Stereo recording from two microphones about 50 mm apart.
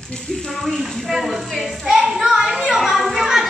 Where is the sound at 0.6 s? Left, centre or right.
Centre.